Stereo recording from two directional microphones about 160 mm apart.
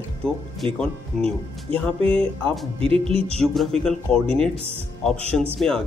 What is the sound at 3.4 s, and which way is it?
Speech, centre (ahead or behind).